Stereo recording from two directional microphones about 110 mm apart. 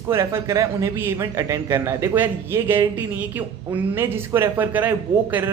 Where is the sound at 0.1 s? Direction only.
25° right (ahead or behind).